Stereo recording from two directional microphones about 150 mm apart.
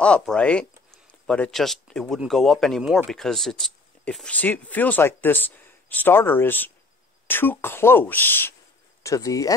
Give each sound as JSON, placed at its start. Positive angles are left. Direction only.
{"t": 0.0, "sound": "speech", "side_deg": 5}